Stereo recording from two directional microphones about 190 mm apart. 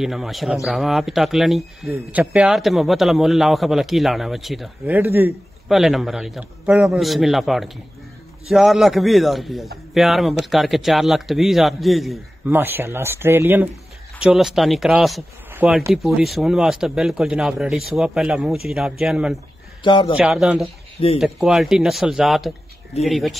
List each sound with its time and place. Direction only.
0.0 s a man's voice: centre (ahead or behind)
12.4 s a man's voice: 10° right (ahead or behind)
19.8 s a man's voice: 25° left (ahead or behind)
20.2 s a man's voice: centre (ahead or behind)